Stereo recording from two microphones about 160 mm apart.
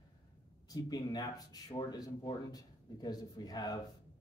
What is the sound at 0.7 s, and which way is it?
Speech, 25° left (ahead or behind).